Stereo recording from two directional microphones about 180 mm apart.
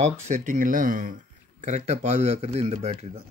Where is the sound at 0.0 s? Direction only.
45° right (ahead or behind).